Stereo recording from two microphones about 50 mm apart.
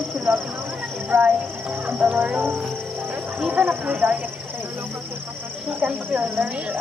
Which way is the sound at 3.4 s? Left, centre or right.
Right.